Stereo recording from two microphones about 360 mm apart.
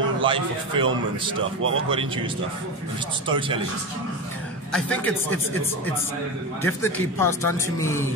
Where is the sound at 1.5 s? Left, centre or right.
Right.